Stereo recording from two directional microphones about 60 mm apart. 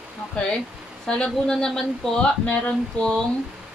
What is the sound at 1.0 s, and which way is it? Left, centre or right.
Speech, centre.